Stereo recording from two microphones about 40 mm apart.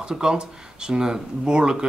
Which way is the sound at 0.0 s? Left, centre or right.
Right.